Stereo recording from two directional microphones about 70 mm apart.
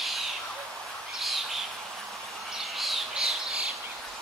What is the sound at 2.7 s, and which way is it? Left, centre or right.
Squawk, centre.